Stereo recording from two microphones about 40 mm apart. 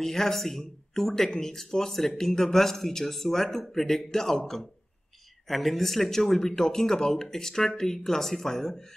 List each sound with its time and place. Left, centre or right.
0.0 s speech: centre
5.5 s speech: centre